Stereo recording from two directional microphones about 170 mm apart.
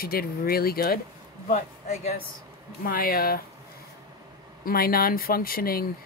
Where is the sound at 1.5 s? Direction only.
40° left (ahead or behind).